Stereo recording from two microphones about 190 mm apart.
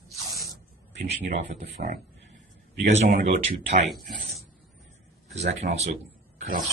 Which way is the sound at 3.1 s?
45° right (ahead or behind).